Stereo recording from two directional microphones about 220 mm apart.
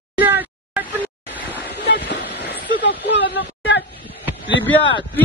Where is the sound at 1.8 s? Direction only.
50° left (ahead or behind).